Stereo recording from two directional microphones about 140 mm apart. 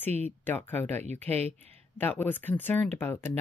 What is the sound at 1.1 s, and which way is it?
Speech, 50° right (ahead or behind).